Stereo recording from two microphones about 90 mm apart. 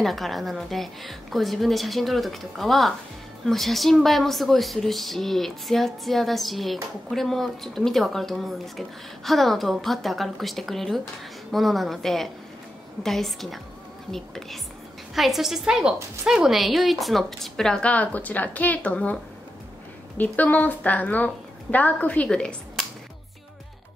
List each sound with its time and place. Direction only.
0.0 s speech: centre (ahead or behind)
20.2 s a woman's voice: 20° left (ahead or behind)